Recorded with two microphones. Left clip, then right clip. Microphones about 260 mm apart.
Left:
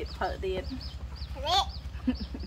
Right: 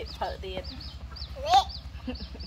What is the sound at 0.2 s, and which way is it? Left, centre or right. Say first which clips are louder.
Speech: left 3 dB; centre.